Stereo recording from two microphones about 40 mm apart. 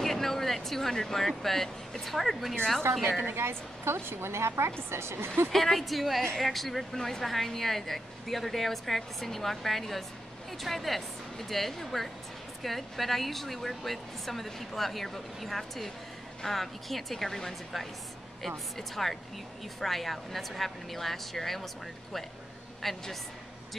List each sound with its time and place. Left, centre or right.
0.0 s speech: centre
2.9 s a woman's voice: right
5.5 s a woman's voice: centre
22.8 s a woman's voice: centre